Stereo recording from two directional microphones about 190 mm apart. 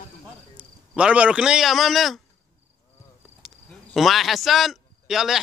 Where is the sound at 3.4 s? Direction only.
Centre (ahead or behind).